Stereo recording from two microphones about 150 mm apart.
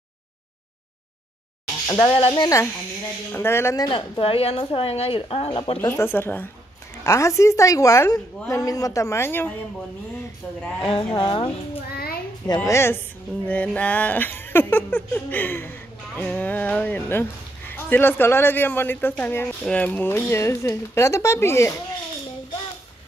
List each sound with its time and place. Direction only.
1.9 s a woman's voice: 25° left (ahead or behind)
3.3 s speech: 15° left (ahead or behind)
4.2 s speech: 40° left (ahead or behind)
5.8 s a woman's voice: 15° left (ahead or behind)
10.9 s speech: 35° left (ahead or behind)
12.5 s speech: 15° left (ahead or behind)